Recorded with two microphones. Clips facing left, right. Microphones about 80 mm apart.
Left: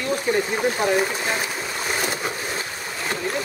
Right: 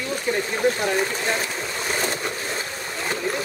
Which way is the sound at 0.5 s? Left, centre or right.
Centre.